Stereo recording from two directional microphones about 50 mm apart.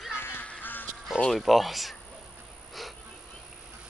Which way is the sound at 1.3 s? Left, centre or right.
Centre.